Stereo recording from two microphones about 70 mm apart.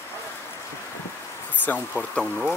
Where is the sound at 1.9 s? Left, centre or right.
Centre.